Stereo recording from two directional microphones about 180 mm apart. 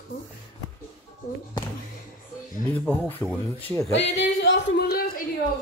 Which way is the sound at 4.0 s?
85° left.